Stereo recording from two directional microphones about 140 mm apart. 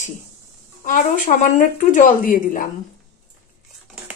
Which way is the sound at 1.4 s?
65° left (ahead or behind).